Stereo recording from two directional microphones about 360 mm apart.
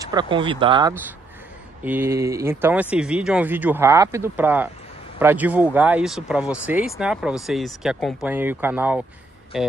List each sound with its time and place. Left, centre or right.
0.1 s speech: centre